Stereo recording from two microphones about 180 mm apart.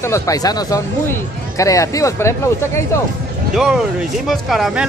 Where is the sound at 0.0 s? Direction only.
15° left (ahead or behind).